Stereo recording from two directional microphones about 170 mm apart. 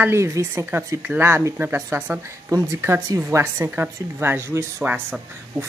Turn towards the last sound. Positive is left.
turn(degrees=-10)  # may be behind; listen again after turning